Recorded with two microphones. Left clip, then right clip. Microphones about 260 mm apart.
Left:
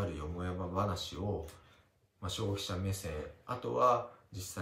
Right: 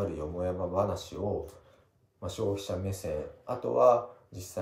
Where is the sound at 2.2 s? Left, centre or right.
Left.